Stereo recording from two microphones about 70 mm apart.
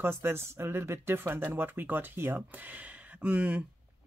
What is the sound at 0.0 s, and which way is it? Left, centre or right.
Speech, right.